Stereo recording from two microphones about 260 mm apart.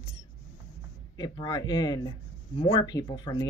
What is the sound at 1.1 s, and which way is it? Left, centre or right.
Speech, centre.